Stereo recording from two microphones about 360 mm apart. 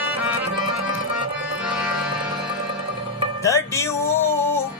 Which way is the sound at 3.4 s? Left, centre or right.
Centre.